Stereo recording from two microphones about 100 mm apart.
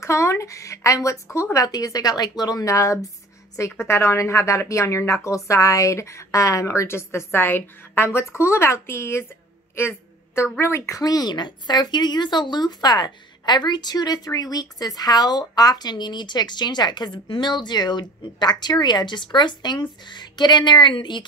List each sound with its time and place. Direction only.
0.0 s a woman's voice: 30° left (ahead or behind)
9.8 s a sound: 25° left (ahead or behind)
10.6 s a woman's voice: 25° left (ahead or behind)
11.0 s speech: 40° left (ahead or behind)